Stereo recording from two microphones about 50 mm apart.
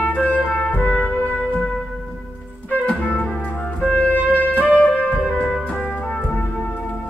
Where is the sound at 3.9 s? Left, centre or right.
Left.